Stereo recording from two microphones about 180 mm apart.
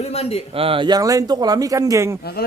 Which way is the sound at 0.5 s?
30° right (ahead or behind).